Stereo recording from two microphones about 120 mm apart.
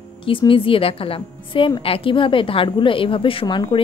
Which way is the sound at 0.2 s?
45° left (ahead or behind).